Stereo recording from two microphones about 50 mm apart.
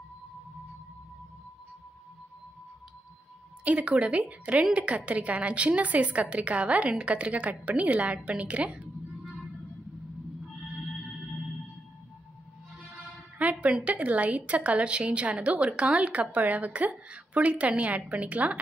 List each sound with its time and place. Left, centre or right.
3.6 s a woman's voice: right
13.4 s music: right
13.8 s a woman's voice: right